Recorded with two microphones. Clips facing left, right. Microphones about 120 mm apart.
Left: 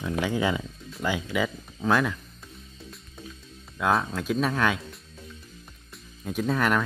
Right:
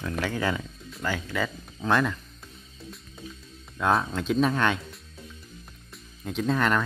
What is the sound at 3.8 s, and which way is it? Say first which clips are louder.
Speech: even; centre (ahead or behind).